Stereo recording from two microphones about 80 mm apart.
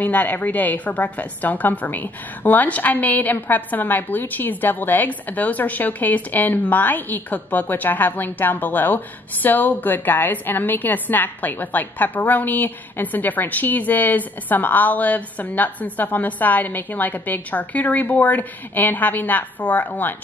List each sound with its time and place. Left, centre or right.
0.0 s a woman's voice: left